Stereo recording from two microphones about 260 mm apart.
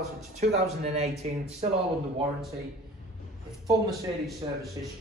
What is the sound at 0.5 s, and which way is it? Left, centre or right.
Speech, right.